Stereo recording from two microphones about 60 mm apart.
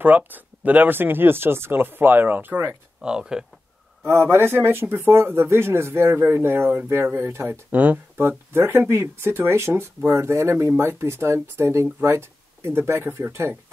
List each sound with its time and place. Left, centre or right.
0.0 s speech: right
3.0 s speech: centre
4.0 s speech: right
7.7 s speech: right
8.2 s speech: right